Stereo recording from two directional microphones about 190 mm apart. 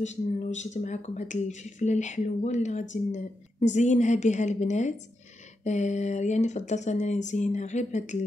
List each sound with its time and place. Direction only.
0.0 s speech: 40° left (ahead or behind)